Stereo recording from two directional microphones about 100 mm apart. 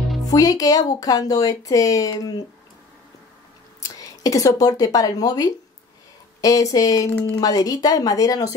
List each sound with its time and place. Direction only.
0.3 s speech: 35° left (ahead or behind)
3.8 s speech: 35° left (ahead or behind)
7.1 s speech: 15° left (ahead or behind)
7.3 s speech: 40° left (ahead or behind)